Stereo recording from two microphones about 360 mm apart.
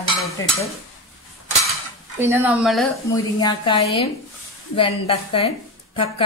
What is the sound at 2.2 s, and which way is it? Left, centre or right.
Speech, centre.